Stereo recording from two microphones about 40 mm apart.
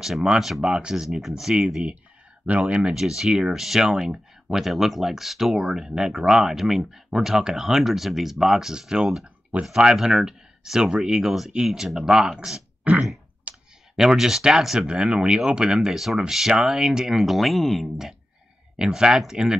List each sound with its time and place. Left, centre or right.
0.0 s speech: centre
0.7 s speech: right
2.9 s speech: centre
3.5 s speech: centre
4.6 s speech: centre
12.9 s a sound: right
13.5 s clicking: right
13.9 s speech: centre
14.9 s speech: right
15.9 s speech: centre
18.9 s speech: centre